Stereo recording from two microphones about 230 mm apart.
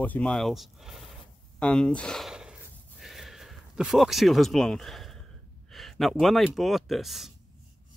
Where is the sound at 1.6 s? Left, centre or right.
Centre.